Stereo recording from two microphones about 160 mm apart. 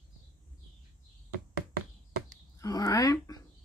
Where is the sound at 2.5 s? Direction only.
20° left (ahead or behind).